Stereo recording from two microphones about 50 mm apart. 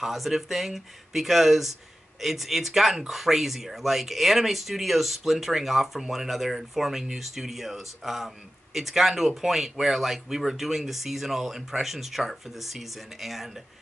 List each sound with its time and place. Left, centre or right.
0.0 s speech: centre